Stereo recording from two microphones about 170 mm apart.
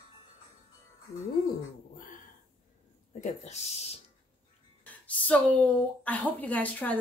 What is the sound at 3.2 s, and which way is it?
Speech, 40° left (ahead or behind).